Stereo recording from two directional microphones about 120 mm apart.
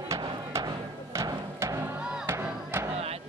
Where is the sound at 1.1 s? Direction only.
25° right (ahead or behind).